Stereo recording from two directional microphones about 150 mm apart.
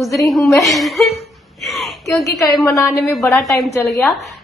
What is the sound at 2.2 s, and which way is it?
Speech, 20° left (ahead or behind).